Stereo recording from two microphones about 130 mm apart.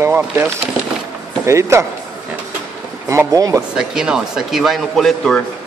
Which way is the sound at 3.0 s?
25° right (ahead or behind).